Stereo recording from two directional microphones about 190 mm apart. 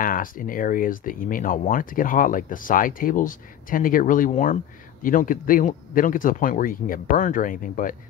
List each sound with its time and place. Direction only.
0.0 s speech: 45° left (ahead or behind)